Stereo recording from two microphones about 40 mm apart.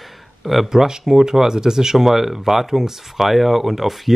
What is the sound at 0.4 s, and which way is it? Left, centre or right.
Speech, centre.